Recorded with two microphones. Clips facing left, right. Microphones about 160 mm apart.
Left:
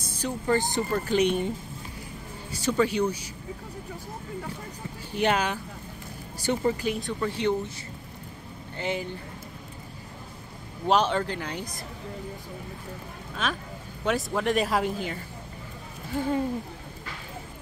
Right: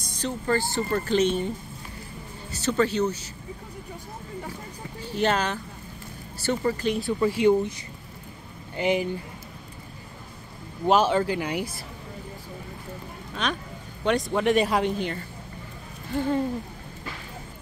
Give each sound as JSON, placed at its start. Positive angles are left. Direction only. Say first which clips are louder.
{"t": 0.1, "sound": "speech", "louder": "even", "side_deg": 15}
{"t": 2.5, "sound": "speech", "louder": "right 1 dB", "side_deg": 10}
{"t": 5.1, "sound": "speech", "louder": "right 1 dB", "side_deg": 10}
{"t": 6.9, "sound": "speech", "louder": "right 5 dB", "side_deg": -5}
{"t": 8.7, "sound": "speech", "louder": "right 6 dB", "side_deg": -15}
{"t": 10.9, "sound": "speech", "louder": "right 3 dB", "side_deg": -5}
{"t": 13.4, "sound": "speech", "louder": "right 1 dB", "side_deg": 5}